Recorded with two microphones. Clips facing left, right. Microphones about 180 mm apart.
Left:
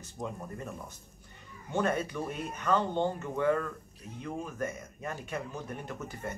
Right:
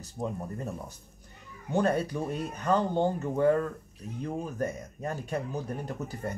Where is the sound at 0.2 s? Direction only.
30° right (ahead or behind).